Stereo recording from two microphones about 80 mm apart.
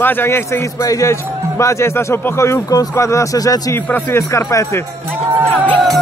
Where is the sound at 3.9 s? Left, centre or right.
Left.